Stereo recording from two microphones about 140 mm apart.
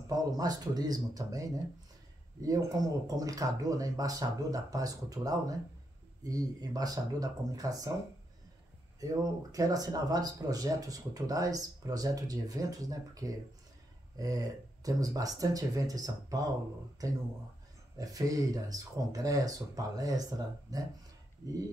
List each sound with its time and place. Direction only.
0.1 s speech: 25° right (ahead or behind)
9.0 s speech: 25° right (ahead or behind)
17.9 s speech: 25° right (ahead or behind)